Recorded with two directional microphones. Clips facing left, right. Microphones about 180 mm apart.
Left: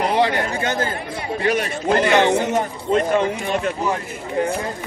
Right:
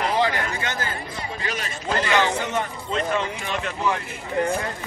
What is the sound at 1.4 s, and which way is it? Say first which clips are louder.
Speech: left 13 dB; 60° left (ahead or behind).